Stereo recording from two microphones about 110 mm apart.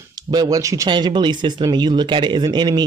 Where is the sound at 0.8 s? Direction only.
45° right (ahead or behind).